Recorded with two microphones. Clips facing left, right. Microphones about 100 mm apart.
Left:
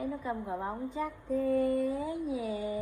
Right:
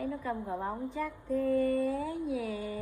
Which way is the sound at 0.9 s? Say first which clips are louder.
Left 1 dB; 20° left (ahead or behind).